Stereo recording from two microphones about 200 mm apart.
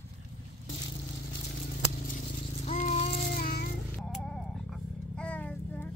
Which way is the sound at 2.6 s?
35° left (ahead or behind).